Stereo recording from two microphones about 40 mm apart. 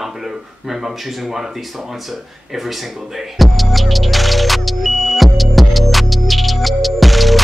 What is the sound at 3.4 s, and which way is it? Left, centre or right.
Music, centre.